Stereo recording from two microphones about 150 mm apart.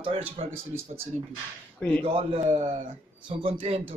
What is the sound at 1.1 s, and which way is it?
A man's voice, 50° right (ahead or behind).